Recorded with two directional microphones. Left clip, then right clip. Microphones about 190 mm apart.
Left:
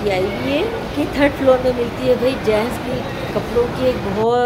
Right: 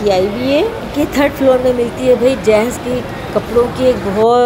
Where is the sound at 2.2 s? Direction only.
20° right (ahead or behind).